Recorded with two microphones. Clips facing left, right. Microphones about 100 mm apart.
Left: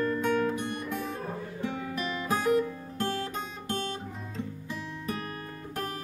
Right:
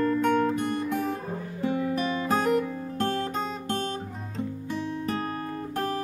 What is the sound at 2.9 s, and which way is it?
Music, 35° right (ahead or behind).